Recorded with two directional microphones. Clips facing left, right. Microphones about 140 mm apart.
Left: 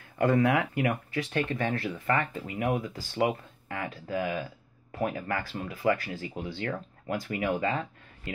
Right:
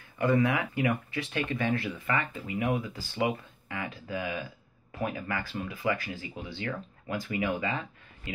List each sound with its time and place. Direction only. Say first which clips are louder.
0.2 s speech: left 2 dB; 60° left (ahead or behind)